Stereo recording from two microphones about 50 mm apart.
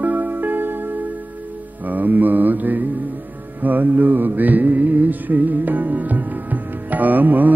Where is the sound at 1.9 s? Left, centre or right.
Right.